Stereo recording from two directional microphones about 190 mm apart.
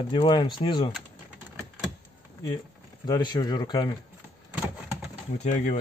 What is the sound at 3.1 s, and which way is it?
Speech, 20° left (ahead or behind).